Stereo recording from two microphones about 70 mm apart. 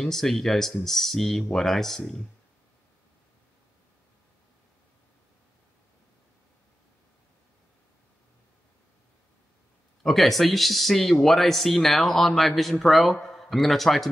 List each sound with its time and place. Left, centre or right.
0.0 s speech: centre
10.0 s speech: centre